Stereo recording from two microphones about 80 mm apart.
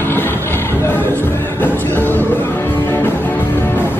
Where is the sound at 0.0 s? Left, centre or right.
Left.